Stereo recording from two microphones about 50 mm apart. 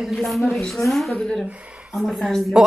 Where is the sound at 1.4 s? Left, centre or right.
Right.